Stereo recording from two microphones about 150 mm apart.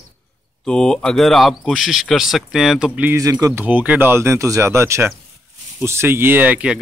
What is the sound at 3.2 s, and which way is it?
Speech, 20° right (ahead or behind).